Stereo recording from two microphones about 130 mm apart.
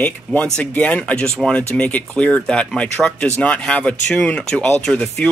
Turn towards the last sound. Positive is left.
turn(degrees=5)  # may be behind; listen again after turning